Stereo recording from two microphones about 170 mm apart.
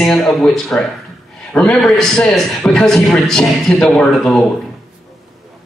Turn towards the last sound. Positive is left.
turn(degrees=5)  # may be behind; listen again after turning